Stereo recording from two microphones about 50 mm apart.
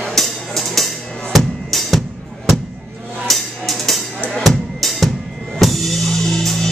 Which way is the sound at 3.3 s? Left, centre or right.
Centre.